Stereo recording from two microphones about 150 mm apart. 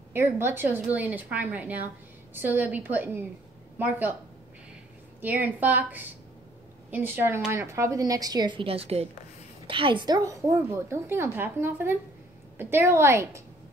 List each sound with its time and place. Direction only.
0.1 s a woman's voice: 15° right (ahead or behind)
5.2 s a woman's voice: 10° right (ahead or behind)